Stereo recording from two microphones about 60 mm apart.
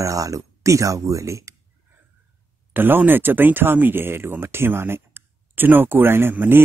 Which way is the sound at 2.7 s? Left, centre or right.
Right.